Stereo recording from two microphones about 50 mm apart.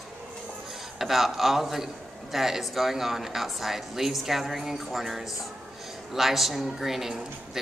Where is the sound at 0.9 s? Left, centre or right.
Centre.